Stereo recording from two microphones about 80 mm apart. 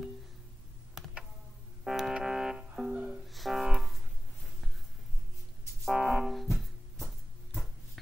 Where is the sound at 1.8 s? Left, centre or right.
Centre.